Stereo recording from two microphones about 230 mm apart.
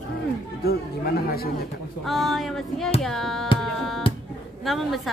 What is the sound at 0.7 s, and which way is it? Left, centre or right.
Chatter, left.